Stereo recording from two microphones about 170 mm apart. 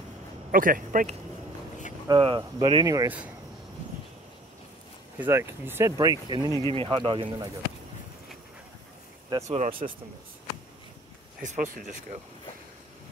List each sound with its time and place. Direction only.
0.5 s a man's voice: 55° right (ahead or behind)
2.0 s speech: 30° right (ahead or behind)
3.1 s speech: 10° right (ahead or behind)
5.2 s speech: 15° right (ahead or behind)
9.5 s speech: 45° right (ahead or behind)
11.4 s speech: 50° right (ahead or behind)